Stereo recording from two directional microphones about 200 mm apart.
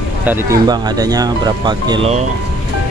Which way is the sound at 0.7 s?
20° right (ahead or behind).